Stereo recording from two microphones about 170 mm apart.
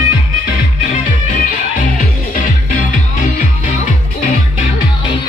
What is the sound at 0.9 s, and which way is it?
Music, 45° left (ahead or behind).